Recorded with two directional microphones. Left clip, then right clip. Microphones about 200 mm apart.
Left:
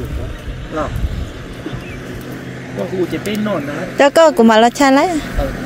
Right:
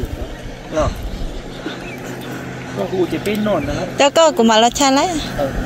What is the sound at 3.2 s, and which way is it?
Speech, 25° left (ahead or behind).